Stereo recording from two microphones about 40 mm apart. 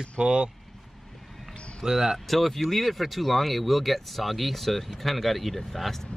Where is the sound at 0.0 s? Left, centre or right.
Right.